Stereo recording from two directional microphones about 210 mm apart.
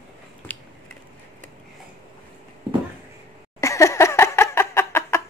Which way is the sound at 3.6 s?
15° left (ahead or behind).